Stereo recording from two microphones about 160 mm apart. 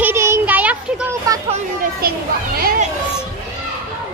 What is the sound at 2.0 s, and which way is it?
Speech, 70° right (ahead or behind).